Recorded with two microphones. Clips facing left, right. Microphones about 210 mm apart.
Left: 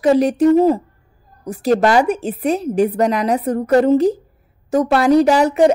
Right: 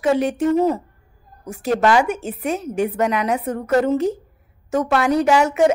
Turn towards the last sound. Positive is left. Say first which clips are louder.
# left 3 dB
turn(degrees=35)  # may be behind; listen again after turning